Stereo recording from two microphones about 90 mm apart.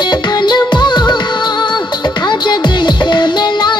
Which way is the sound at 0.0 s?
55° left (ahead or behind).